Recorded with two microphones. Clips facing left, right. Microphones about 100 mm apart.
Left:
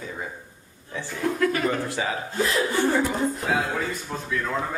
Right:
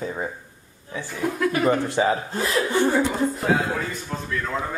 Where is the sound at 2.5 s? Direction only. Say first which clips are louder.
Right 3 dB; centre (ahead or behind).